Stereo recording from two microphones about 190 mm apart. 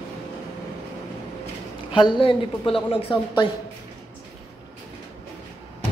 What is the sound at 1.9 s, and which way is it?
A woman's voice, 25° left (ahead or behind).